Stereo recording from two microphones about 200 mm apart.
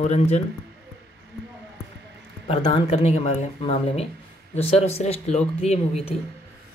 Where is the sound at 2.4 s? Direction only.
30° left (ahead or behind).